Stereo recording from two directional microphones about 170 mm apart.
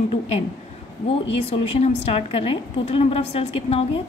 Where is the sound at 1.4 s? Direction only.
40° left (ahead or behind).